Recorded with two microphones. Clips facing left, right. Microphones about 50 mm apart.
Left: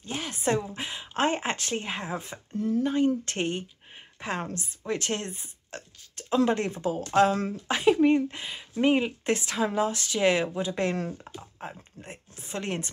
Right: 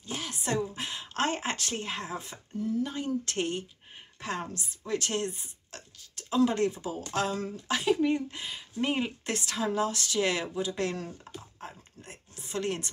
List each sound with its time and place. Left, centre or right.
0.0 s a woman's voice: left
7.6 s speech: left
8.8 s speech: centre
9.2 s speech: left